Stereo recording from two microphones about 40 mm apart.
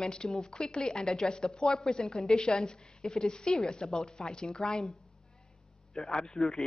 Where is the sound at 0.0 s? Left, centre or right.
Left.